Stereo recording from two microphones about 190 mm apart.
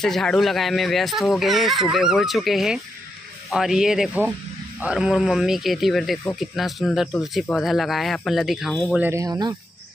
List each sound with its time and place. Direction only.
0.0 s speech: centre (ahead or behind)
9.0 s speech: 15° right (ahead or behind)